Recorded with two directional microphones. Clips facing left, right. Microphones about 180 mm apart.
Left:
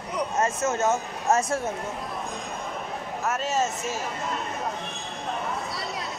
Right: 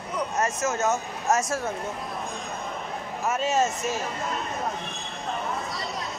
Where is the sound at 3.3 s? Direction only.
5° left (ahead or behind).